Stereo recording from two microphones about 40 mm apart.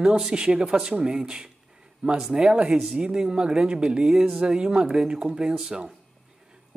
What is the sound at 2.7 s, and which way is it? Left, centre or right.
Speech, centre.